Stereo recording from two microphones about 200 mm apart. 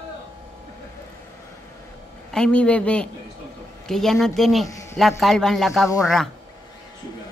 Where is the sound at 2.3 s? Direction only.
5° left (ahead or behind).